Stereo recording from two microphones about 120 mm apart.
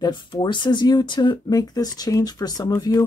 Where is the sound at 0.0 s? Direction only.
40° left (ahead or behind).